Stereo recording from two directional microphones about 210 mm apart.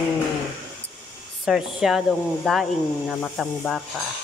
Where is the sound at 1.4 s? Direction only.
Centre (ahead or behind).